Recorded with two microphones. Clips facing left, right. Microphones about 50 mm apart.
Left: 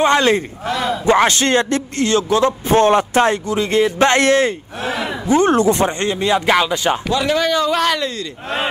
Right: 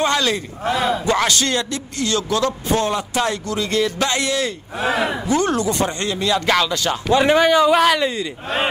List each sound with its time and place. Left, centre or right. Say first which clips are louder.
0.0 s speech: left 5 dB; left
0.7 s speech: right 2 dB; centre
1.0 s speech: left 5 dB; left
2.8 s speech: left 11 dB; left
3.4 s speech: left 4 dB; left
4.0 s speech: left 8 dB; left
4.7 s speech: right 2 dB; right
5.3 s speech: left 8 dB; left
7.2 s speech: right 7 dB; right